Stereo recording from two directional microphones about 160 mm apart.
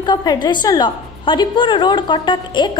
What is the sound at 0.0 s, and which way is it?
A woman's voice, 25° left (ahead or behind).